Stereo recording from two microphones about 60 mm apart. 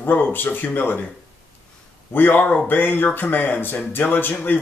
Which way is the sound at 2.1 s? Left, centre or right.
Left.